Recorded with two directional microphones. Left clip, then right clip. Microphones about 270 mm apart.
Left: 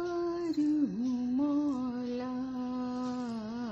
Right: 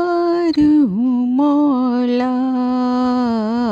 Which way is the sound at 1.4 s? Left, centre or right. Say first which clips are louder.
Right 17 dB; right.